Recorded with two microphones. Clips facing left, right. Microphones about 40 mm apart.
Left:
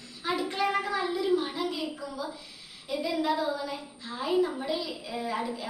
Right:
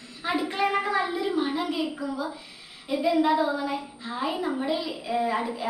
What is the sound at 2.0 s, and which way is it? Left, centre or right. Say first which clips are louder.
A woman's voice: right 5 dB; right.